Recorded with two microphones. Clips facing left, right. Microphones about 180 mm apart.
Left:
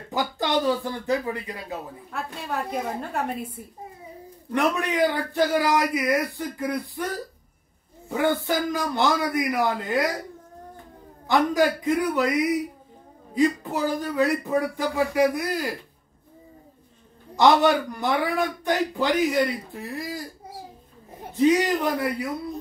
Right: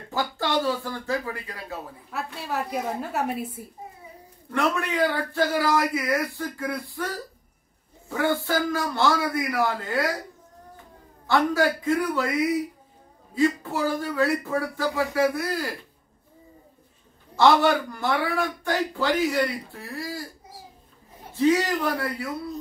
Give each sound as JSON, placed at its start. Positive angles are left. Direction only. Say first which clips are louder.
{"t": 0.1, "sound": "a man's voice", "louder": "left 1 dB", "side_deg": 15}
{"t": 2.0, "sound": "a woman's voice", "louder": "right 1 dB", "side_deg": -5}
{"t": 4.5, "sound": "a man's voice", "louder": "left 2 dB", "side_deg": 15}
{"t": 11.2, "sound": "a man's voice", "louder": "left 1 dB", "side_deg": 15}
{"t": 17.4, "sound": "a man's voice", "louder": "left 1 dB", "side_deg": 15}
{"t": 21.3, "sound": "a man's voice", "louder": "left 2 dB", "side_deg": 20}